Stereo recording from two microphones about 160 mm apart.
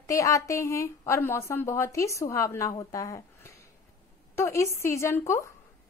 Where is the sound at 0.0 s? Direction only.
20° left (ahead or behind).